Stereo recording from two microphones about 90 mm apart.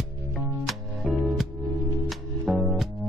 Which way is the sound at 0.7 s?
Centre (ahead or behind).